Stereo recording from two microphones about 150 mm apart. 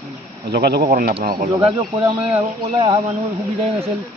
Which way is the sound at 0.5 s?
90° right.